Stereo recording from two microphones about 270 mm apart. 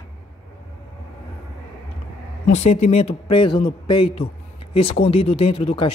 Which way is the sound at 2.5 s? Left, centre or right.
Left.